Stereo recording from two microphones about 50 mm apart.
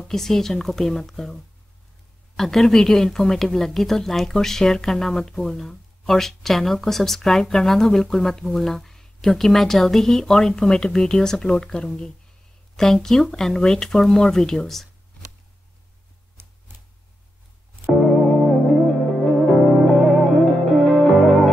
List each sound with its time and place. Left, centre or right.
0.1 s speech: centre
16.4 s a sound: right
18.0 s music: centre